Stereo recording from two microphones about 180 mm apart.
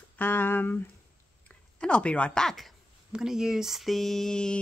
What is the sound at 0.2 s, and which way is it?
A woman's voice, 10° left (ahead or behind).